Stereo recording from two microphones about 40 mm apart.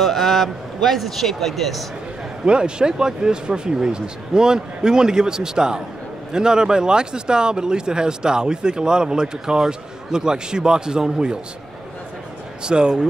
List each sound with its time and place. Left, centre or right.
0.0 s a man's voice: centre
2.4 s speech: right
12.6 s speech: right